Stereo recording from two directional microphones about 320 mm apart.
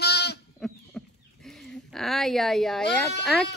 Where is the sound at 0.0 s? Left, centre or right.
Left.